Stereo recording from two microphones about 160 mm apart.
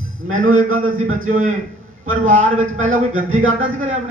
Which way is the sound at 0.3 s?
55° right (ahead or behind).